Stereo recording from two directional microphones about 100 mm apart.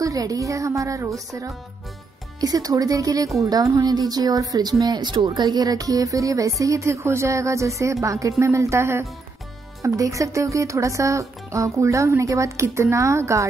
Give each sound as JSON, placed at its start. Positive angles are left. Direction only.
{"t": 0.0, "sound": "speech", "side_deg": -35}